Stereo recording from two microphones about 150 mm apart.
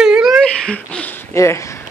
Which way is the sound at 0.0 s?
5° right (ahead or behind).